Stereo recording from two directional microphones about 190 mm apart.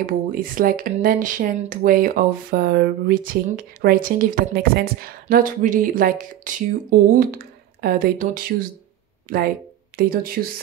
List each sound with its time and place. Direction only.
0.0 s speech: 45° right (ahead or behind)
9.9 s speech: 50° right (ahead or behind)